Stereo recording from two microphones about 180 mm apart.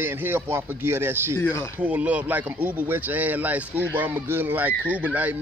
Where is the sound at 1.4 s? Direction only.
15° left (ahead or behind).